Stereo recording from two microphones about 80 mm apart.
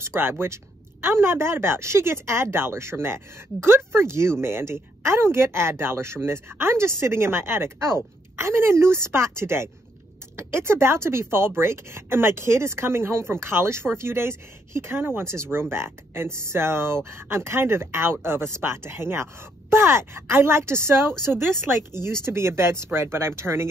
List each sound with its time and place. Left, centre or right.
0.0 s speech: right